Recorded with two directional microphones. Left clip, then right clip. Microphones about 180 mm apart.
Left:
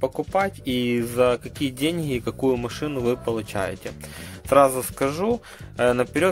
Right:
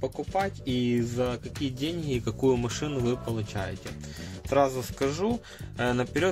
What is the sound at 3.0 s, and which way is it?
A man's voice, 30° left (ahead or behind).